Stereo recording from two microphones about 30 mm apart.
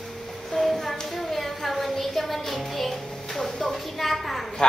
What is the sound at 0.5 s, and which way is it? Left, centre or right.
Music, centre.